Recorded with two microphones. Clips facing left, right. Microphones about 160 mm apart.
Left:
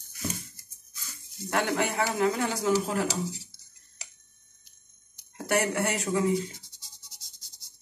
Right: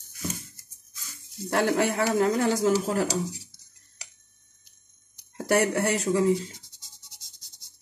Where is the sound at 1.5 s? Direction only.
40° right (ahead or behind).